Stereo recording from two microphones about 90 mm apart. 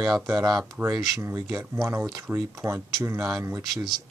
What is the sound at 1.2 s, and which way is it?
Speech, 30° right (ahead or behind).